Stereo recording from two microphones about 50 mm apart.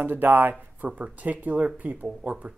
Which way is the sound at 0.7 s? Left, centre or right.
Right.